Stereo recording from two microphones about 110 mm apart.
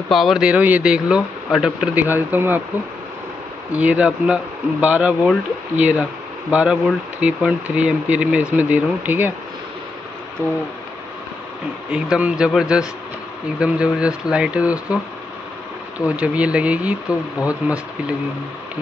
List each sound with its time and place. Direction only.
0.1 s speech: centre (ahead or behind)
2.0 s speech: 15° right (ahead or behind)
3.7 s speech: 15° right (ahead or behind)
10.4 s speech: 20° right (ahead or behind)
11.9 s speech: 10° right (ahead or behind)
16.1 s speech: 10° right (ahead or behind)